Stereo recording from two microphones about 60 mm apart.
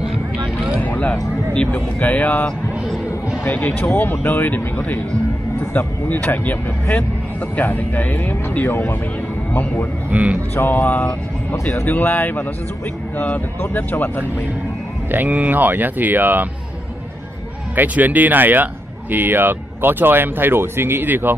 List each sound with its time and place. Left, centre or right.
0.7 s a sound: left
1.5 s a man's voice: centre
3.5 s a man's voice: left
10.1 s speech: right
10.5 s speech: left
11.5 s speech: left
13.6 s speech: left
15.0 s speech: right
17.7 s speech: right